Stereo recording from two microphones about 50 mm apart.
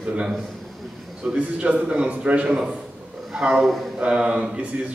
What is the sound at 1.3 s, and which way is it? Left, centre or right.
A man's voice, right.